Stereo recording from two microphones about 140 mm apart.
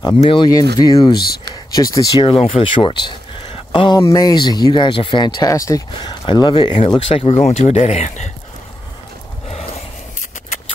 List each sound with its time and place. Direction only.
0.2 s speech: 40° left (ahead or behind)
0.5 s speech: 25° left (ahead or behind)
1.5 s a sound: 25° left (ahead or behind)
2.1 s speech: 40° left (ahead or behind)